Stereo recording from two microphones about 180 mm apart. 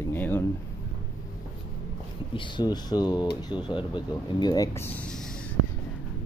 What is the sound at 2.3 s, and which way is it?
Speech, 25° left (ahead or behind).